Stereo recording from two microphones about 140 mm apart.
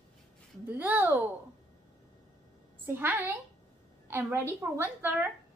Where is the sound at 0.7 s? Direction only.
15° right (ahead or behind).